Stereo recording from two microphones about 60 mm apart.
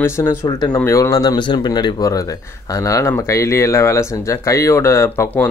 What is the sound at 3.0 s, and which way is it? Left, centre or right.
Speech, left.